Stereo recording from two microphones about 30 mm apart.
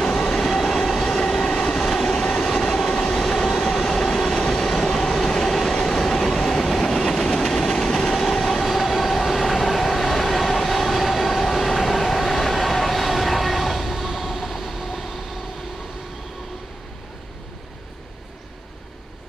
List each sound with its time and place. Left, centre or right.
0.0 s train: left
0.3 s train: centre; by 1.8 s left
1.8 s train: centre
4.1 s train: centre